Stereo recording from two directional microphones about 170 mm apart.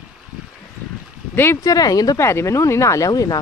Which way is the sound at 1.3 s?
15° left (ahead or behind).